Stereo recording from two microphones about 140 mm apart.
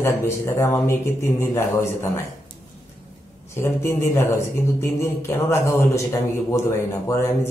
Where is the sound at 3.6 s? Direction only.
20° left (ahead or behind).